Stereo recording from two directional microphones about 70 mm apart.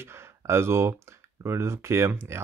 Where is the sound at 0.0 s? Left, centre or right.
Right.